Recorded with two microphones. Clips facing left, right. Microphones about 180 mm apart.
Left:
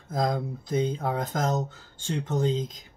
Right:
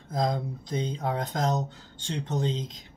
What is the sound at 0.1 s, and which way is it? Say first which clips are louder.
Speech: left 1 dB; centre (ahead or behind).